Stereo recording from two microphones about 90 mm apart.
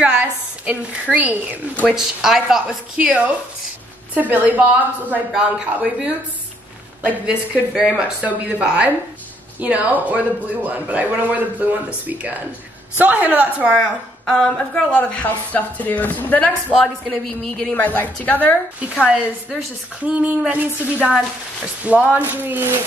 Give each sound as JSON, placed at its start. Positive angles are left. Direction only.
{"t": 0.0, "sound": "a sound", "side_deg": -15}
{"t": 1.1, "sound": "a woman's voice", "side_deg": -20}
{"t": 1.9, "sound": "a woman's voice", "side_deg": -5}
{"t": 14.2, "sound": "a woman's voice", "side_deg": 10}
{"t": 16.7, "sound": "a woman's voice", "side_deg": 5}
{"t": 18.8, "sound": "a woman's voice", "side_deg": -10}